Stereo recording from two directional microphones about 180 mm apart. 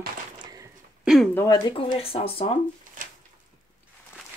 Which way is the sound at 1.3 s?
20° left (ahead or behind).